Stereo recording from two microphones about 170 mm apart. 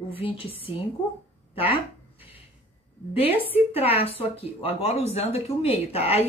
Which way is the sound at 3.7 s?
35° left (ahead or behind).